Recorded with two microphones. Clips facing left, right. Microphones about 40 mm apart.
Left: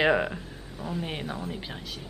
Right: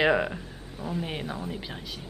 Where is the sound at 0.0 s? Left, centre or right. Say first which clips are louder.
Even; centre.